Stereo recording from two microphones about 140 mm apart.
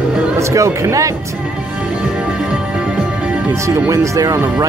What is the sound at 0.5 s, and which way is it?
Speech, 20° right (ahead or behind).